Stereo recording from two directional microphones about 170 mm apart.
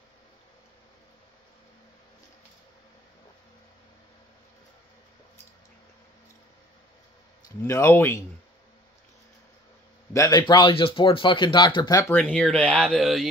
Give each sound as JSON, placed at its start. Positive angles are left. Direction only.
{"t": 7.4, "sound": "speech", "side_deg": 15}
{"t": 10.1, "sound": "speech", "side_deg": 20}
{"t": 12.2, "sound": "speech", "side_deg": 5}